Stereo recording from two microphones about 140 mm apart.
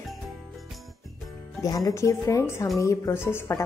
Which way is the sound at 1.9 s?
20° left (ahead or behind).